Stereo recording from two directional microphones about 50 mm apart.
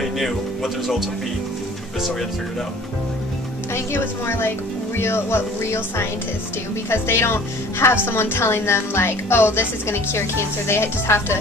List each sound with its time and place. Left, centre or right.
0.0 s speech: centre
3.7 s a woman's voice: left